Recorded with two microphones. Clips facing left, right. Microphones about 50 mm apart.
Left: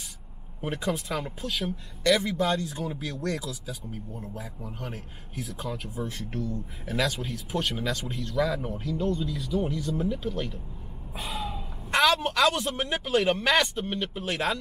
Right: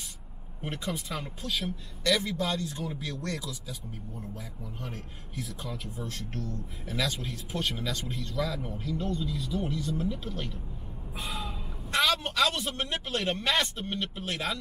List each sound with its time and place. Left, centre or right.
0.6 s speech: centre
0.9 s speech: centre
4.8 s speech: centre
6.9 s speech: centre
9.9 s speech: centre
11.1 s a sound: centre
13.1 s speech: centre